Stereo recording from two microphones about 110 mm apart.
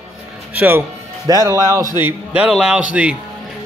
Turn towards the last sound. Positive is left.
turn(degrees=-10)  # may be behind; listen again after turning